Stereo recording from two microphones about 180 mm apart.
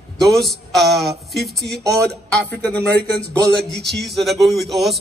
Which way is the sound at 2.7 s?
70° right (ahead or behind).